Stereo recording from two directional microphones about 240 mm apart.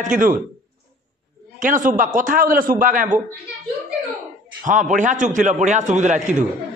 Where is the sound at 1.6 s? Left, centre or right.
Right.